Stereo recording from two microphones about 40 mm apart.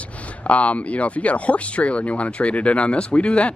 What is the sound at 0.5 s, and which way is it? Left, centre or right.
Speech, left.